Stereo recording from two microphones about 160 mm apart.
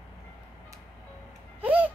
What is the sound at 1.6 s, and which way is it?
Music, 10° right (ahead or behind).